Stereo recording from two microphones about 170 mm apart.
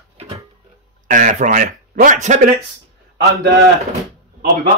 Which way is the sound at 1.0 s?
50° right (ahead or behind).